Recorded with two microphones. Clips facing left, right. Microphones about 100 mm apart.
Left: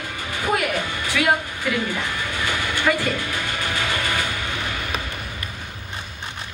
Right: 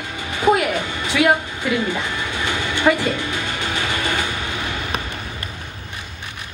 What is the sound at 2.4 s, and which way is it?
Music, 20° right (ahead or behind).